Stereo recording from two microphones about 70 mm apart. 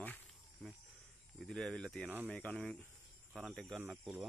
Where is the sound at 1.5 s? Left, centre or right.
Centre.